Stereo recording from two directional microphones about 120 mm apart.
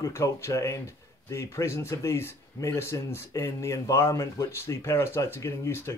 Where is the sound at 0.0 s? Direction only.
25° left (ahead or behind).